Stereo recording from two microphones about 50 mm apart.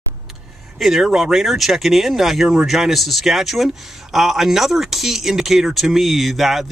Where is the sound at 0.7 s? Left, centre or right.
Centre.